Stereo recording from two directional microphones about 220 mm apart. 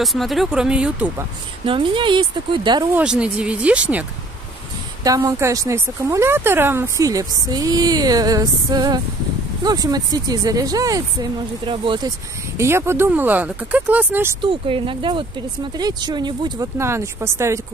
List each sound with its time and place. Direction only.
0.0 s speech: centre (ahead or behind)
1.7 s speech: 20° right (ahead or behind)
3.0 s speech: 5° right (ahead or behind)
5.0 s a woman's voice: 15° right (ahead or behind)
12.5 s a woman's voice: 10° right (ahead or behind)
14.4 s speech: 25° right (ahead or behind)